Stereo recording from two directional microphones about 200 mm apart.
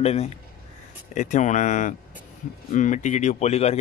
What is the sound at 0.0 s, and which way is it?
Speech, 30° left (ahead or behind).